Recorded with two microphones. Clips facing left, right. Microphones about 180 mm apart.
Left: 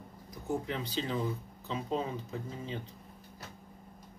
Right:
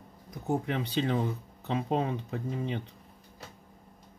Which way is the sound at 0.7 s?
65° right (ahead or behind).